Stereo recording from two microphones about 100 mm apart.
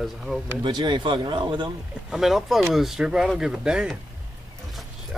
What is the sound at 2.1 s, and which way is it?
Speech, centre (ahead or behind).